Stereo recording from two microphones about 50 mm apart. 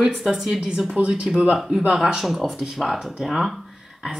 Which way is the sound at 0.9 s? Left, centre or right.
Right.